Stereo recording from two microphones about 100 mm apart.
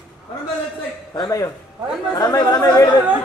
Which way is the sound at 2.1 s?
40° left (ahead or behind).